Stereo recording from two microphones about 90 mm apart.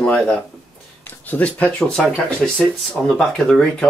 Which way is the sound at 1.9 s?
10° left (ahead or behind).